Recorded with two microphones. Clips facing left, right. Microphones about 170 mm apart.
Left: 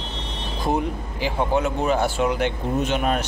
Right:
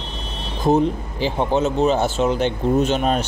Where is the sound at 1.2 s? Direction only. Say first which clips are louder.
Right 3 dB; 25° right (ahead or behind).